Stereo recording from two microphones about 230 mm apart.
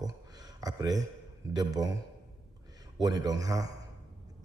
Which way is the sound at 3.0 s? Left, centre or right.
Centre.